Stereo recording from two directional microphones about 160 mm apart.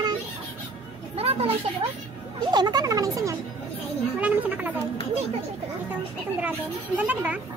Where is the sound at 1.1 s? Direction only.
40° right (ahead or behind).